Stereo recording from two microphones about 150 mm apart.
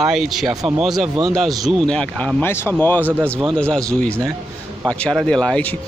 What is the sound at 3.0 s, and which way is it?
Speech, 10° right (ahead or behind).